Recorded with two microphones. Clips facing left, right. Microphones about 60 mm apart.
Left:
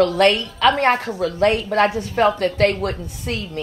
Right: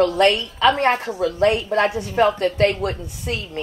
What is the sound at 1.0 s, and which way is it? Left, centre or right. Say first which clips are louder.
Speech: even; right.